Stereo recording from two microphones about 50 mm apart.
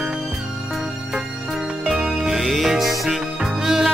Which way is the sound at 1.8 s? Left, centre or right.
Centre.